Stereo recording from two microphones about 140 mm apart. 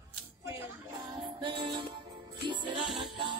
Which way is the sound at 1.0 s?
35° right (ahead or behind).